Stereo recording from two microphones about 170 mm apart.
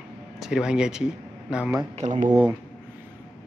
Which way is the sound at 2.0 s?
45° right (ahead or behind).